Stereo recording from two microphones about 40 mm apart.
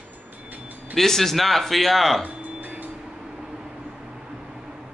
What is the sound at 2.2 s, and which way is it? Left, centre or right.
Music, right.